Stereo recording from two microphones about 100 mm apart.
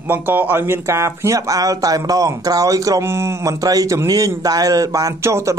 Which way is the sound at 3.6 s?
35° right (ahead or behind).